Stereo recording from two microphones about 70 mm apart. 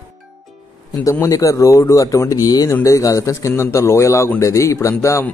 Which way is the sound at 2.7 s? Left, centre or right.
Left.